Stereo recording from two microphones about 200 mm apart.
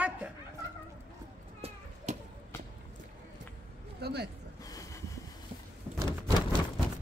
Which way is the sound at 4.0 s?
55° right (ahead or behind).